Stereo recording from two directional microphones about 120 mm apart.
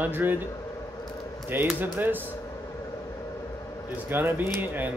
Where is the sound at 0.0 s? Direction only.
15° right (ahead or behind).